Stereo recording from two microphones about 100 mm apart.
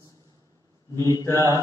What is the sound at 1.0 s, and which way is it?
Mantra, 35° left (ahead or behind).